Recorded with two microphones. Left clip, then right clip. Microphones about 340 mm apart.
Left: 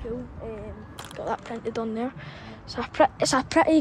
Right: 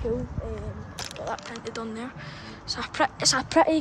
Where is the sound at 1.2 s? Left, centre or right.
Centre.